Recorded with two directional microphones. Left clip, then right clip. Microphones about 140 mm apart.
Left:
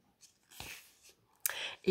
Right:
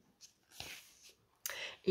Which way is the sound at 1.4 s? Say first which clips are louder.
Left 4 dB; 35° left (ahead or behind).